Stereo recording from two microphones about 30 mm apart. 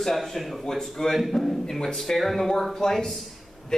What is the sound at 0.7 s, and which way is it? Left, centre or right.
Speech, centre.